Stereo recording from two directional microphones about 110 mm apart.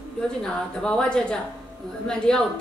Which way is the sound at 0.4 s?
5° left (ahead or behind).